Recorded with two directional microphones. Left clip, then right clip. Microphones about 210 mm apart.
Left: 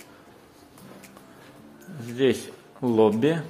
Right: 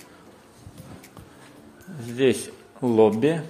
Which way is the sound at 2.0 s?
10° right (ahead or behind).